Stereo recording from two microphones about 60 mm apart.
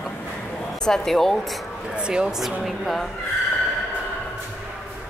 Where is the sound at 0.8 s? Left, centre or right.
Centre.